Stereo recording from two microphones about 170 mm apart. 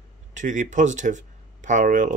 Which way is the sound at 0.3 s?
45° right (ahead or behind).